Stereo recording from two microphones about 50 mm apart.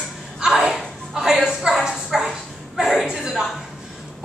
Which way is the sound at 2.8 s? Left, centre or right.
Centre.